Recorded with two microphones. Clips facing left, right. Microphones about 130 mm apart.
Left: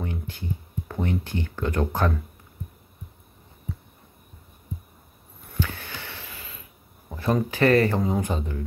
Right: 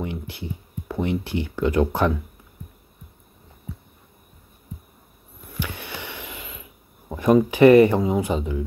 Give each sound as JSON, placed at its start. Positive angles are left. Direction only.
{"t": 0.0, "sound": "speech", "side_deg": -15}
{"t": 5.6, "sound": "a sound", "side_deg": -15}
{"t": 8.0, "sound": "speech", "side_deg": -10}